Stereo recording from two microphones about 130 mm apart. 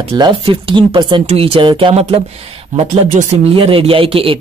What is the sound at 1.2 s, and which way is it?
Speech, 50° right (ahead or behind).